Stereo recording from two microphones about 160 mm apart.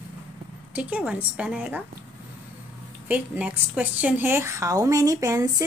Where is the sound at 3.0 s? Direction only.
10° right (ahead or behind).